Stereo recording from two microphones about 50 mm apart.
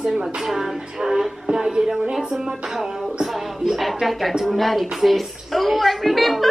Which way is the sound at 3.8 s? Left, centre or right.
Centre.